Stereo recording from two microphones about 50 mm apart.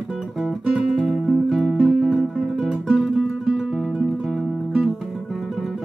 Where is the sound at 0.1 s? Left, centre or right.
Centre.